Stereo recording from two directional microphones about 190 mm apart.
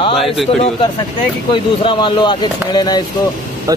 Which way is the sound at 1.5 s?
25° left (ahead or behind).